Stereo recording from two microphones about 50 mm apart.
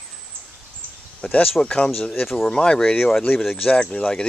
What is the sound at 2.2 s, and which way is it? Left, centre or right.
Speech, centre.